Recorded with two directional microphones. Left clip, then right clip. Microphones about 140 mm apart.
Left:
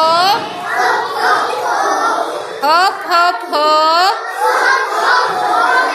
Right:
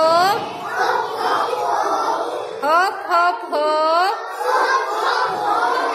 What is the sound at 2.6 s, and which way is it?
A woman's voice, 10° right (ahead or behind).